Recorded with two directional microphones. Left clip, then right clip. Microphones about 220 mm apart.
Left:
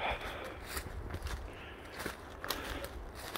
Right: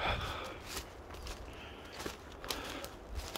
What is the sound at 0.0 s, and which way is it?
Gasp, 20° right (ahead or behind).